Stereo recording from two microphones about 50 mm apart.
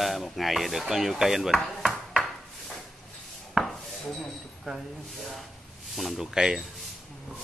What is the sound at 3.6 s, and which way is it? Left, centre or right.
Chopping, centre.